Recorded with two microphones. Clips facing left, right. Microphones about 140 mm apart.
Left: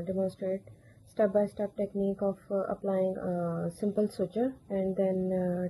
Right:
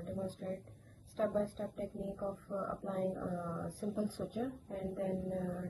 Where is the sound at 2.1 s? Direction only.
55° left (ahead or behind).